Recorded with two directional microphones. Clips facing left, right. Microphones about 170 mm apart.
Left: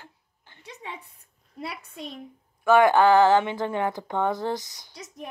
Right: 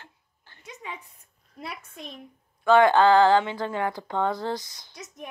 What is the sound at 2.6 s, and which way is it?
Speech, 15° left (ahead or behind).